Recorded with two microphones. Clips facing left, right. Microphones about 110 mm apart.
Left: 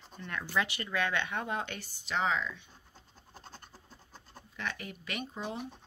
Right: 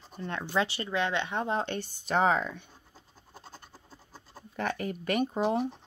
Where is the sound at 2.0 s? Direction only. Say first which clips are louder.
Right 6 dB; 50° right (ahead or behind).